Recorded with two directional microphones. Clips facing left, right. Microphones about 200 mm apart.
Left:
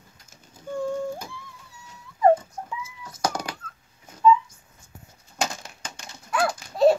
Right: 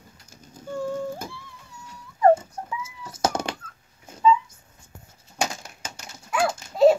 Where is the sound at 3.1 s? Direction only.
25° right (ahead or behind).